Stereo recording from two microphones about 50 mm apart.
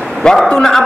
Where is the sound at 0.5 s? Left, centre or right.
Centre.